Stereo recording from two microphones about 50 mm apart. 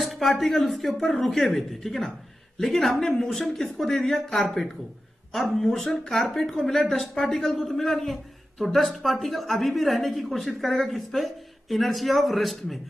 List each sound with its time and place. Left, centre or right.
0.0 s speech: centre